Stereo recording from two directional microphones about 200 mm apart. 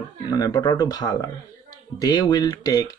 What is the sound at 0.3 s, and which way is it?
Speech, 20° left (ahead or behind).